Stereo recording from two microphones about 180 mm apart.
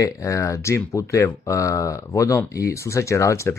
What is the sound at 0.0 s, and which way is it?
Speech, 15° left (ahead or behind).